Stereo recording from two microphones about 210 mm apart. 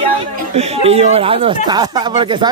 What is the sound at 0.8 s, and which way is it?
Speech, 30° right (ahead or behind).